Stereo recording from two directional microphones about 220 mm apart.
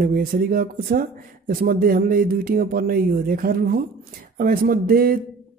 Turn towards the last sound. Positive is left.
turn(degrees=-40)  # may be behind; listen again after turning